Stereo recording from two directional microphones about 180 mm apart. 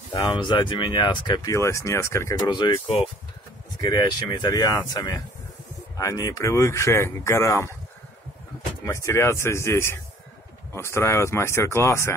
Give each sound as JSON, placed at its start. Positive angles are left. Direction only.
{"t": 0.1, "sound": "speech", "side_deg": 25}
{"t": 3.8, "sound": "speech", "side_deg": 25}
{"t": 8.8, "sound": "speech", "side_deg": 15}